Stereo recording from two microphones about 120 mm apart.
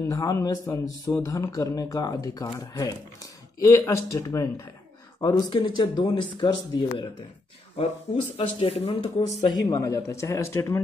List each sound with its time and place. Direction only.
0.0 s speech: 30° left (ahead or behind)
7.7 s speech: 55° left (ahead or behind)
9.2 s speech: 40° left (ahead or behind); by 10.8 s 25° left (ahead or behind)